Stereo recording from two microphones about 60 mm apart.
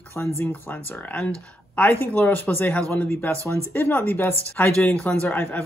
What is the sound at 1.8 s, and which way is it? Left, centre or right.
Speech, left.